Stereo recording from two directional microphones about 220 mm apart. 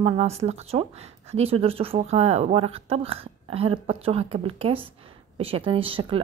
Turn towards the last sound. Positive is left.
turn(degrees=-25)  # may be behind; listen again after turning